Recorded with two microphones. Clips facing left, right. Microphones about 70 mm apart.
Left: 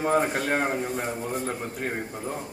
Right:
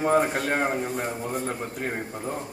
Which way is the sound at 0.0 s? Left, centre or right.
Centre.